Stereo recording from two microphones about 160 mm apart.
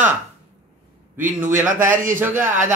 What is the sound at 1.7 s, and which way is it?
Speech, 55° right (ahead or behind).